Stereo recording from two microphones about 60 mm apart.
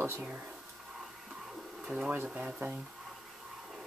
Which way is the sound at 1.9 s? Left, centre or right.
Centre.